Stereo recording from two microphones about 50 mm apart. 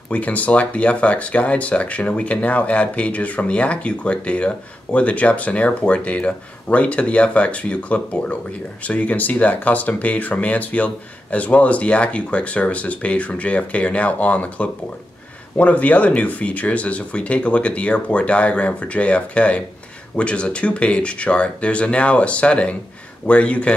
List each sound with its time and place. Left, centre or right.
0.1 s speech: left